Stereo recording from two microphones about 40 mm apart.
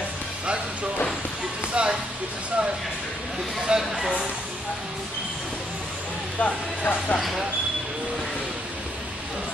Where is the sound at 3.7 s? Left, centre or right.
Right.